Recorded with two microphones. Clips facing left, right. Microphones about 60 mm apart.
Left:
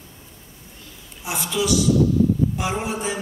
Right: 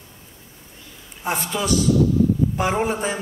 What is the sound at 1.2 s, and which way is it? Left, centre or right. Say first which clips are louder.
A man's voice: even; right.